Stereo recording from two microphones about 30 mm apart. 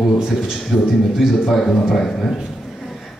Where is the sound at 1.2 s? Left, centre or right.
Centre.